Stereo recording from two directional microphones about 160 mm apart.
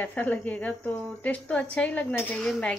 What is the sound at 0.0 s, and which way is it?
A woman's voice, 10° left (ahead or behind).